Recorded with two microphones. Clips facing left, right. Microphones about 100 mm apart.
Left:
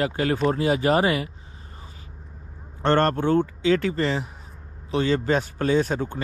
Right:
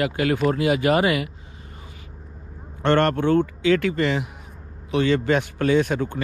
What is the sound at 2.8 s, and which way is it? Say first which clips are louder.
Speech: right 1 dB; 65° right (ahead or behind).